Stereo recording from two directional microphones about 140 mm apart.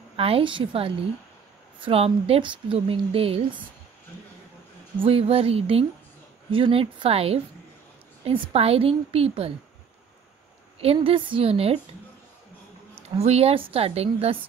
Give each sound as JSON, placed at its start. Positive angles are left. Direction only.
{"t": 0.1, "sound": "a woman's voice", "side_deg": -40}
{"t": 5.0, "sound": "a woman's voice", "side_deg": -45}
{"t": 10.8, "sound": "a woman's voice", "side_deg": -45}
{"t": 13.2, "sound": "a woman's voice", "side_deg": -50}